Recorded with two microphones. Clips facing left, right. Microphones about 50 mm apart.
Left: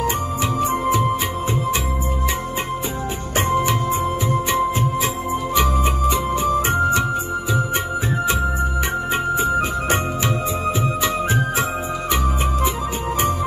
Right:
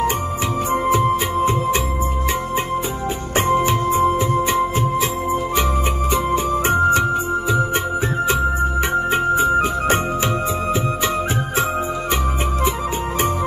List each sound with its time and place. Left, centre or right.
0.7 s music: right
3.3 s music: right
5.3 s music: right
9.1 s music: right